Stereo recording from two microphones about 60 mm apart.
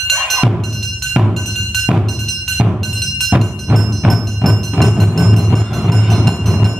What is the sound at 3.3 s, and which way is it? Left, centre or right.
Music, centre.